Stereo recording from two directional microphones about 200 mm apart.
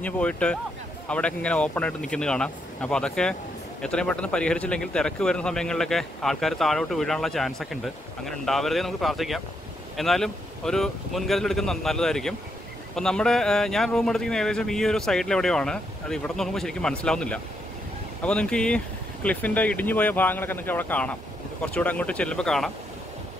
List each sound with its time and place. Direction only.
0.0 s a man's voice: 5° left (ahead or behind)